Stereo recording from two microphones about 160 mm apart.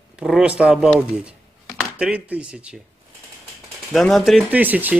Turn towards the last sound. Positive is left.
turn(degrees=-10)  # may be behind; listen again after turning